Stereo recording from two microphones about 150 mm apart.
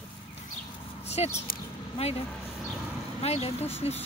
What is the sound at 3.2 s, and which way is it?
Speech, 45° left (ahead or behind).